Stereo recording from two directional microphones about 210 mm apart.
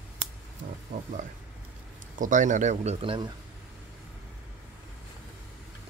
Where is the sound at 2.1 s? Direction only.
40° right (ahead or behind).